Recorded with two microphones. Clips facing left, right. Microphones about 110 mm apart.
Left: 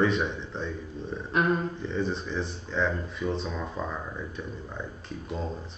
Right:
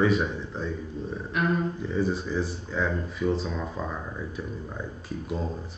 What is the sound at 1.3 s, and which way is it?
Speech, 35° left (ahead or behind).